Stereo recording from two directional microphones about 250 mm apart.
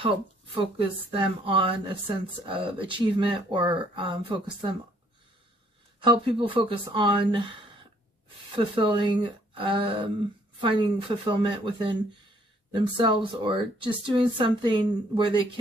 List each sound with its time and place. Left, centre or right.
0.6 s speech: right
5.9 s speech: centre